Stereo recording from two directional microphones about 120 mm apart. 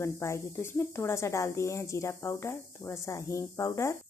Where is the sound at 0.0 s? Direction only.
25° left (ahead or behind).